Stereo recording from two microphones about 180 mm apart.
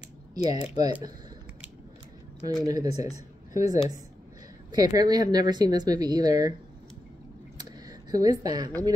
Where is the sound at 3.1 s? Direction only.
20° right (ahead or behind).